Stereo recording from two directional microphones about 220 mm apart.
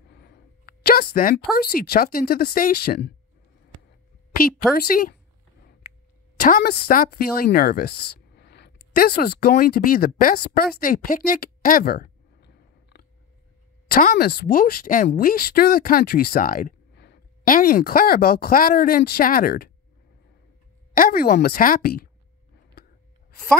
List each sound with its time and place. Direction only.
0.1 s speech: 50° left (ahead or behind)
4.4 s a woman's voice: 40° left (ahead or behind)
20.9 s speech: 40° left (ahead or behind)